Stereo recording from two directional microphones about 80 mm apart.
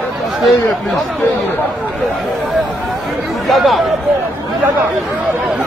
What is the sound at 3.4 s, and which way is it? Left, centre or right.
Speech, centre.